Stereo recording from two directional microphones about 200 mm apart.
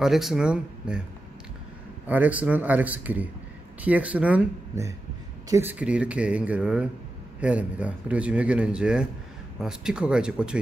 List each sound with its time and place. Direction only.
0.0 s speech: centre (ahead or behind)
2.0 s speech: 5° right (ahead or behind)